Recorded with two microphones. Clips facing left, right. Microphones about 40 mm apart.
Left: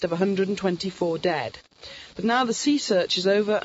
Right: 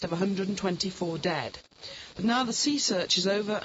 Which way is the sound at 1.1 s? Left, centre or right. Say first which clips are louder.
Left 4 dB; centre.